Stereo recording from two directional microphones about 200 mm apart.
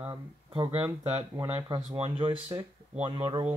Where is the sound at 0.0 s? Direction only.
25° right (ahead or behind).